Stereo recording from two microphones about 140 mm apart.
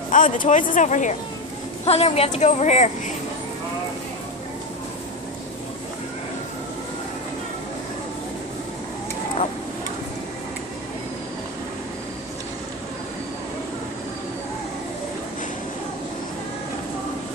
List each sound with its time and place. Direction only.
0.1 s speech: 65° left (ahead or behind)
1.9 s speech: 50° left (ahead or behind)